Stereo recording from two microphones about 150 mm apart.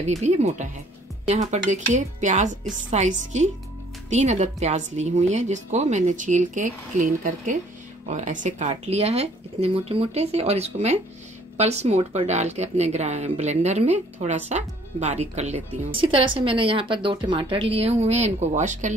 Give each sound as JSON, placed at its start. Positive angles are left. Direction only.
{"t": 0.1, "sound": "speech", "side_deg": -50}